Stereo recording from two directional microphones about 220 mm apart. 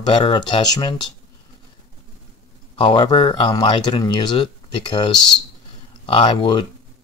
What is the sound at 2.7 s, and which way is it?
Speech, 20° left (ahead or behind).